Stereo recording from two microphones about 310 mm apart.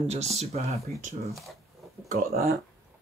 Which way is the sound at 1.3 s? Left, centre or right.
Centre.